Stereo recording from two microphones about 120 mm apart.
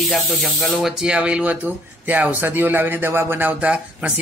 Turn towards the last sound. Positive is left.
turn(degrees=-10)  # may be behind; listen again after turning